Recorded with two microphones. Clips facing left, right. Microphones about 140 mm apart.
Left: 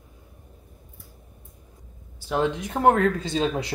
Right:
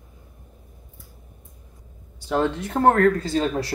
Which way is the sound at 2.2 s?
5° left (ahead or behind).